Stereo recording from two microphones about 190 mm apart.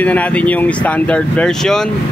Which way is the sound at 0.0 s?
5° left (ahead or behind).